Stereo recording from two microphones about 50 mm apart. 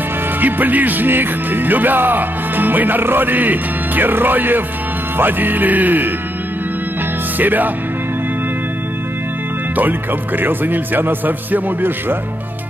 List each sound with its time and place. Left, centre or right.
0.4 s speech: right
7.3 s speech: right
9.8 s speech: right